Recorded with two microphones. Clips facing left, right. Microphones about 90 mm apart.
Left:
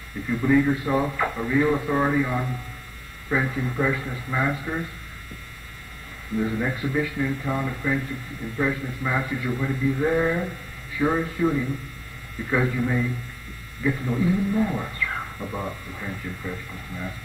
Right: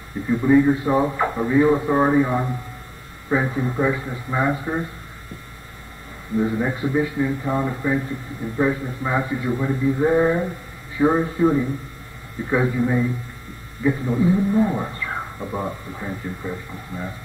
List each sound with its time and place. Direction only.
0.3 s speech: 20° right (ahead or behind)
6.3 s speech: 20° right (ahead or behind)